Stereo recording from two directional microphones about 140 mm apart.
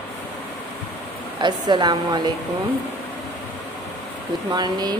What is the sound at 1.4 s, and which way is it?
Speech, 30° right (ahead or behind).